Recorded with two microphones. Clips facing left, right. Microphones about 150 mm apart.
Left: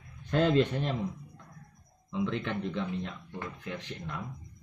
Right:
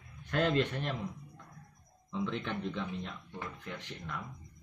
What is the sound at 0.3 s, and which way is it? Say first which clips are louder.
Speech: left 5 dB; 25° left (ahead or behind).